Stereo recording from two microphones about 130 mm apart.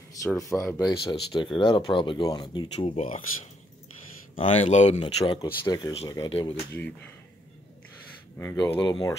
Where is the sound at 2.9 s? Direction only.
55° left (ahead or behind).